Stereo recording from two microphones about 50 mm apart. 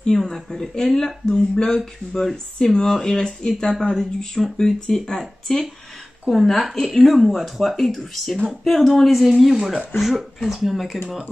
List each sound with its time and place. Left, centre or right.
0.1 s speech: centre